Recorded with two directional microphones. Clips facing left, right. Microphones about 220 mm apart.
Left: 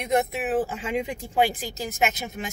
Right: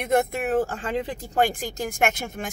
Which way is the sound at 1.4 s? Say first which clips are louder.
Right 3 dB; 50° right (ahead or behind).